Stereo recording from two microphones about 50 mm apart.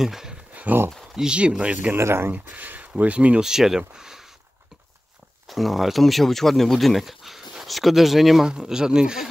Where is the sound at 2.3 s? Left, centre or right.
Right.